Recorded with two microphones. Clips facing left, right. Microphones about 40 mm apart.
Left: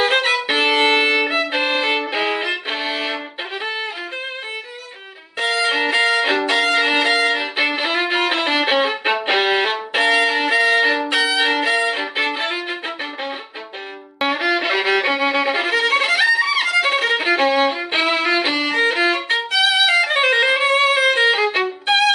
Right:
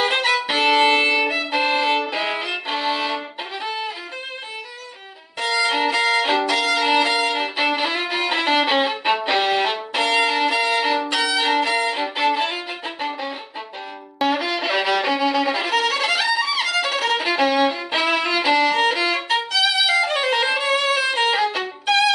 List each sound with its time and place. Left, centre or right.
0.0 s violin: left
1.3 s violin: left
2.1 s music: left
5.4 s violin: left
14.2 s violin: left